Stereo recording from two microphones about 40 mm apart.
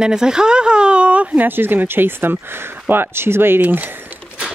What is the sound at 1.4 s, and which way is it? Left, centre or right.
Speech, right.